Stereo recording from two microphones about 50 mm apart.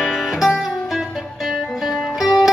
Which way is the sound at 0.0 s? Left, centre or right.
Centre.